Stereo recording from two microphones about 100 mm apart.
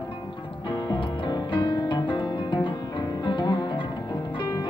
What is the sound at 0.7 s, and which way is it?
Music, 45° left (ahead or behind).